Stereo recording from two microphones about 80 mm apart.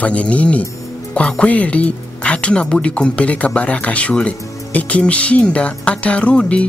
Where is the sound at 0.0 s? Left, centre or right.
Centre.